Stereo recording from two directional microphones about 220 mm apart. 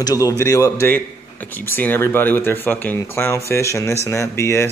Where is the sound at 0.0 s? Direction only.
15° left (ahead or behind).